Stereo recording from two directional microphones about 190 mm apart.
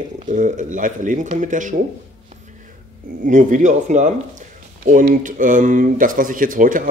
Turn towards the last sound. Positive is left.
turn(degrees=-45)  # may be behind; listen again after turning